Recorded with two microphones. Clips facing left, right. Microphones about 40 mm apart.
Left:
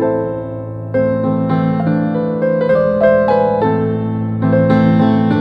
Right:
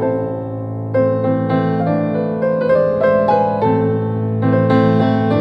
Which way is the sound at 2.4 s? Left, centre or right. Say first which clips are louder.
Left 1 dB; centre.